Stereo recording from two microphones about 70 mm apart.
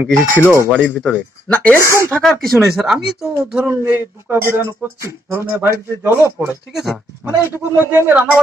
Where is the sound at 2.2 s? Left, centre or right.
Centre.